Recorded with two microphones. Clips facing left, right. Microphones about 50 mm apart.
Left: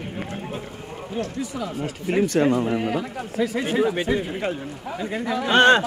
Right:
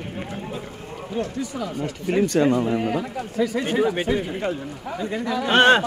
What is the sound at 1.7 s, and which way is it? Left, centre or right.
Speech, centre.